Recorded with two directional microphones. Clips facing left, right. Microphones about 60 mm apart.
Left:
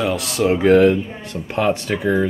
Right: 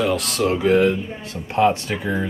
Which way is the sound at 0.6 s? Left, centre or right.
Left.